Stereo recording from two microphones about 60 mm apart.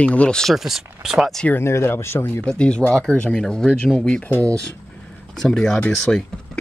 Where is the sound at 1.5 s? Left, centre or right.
Left.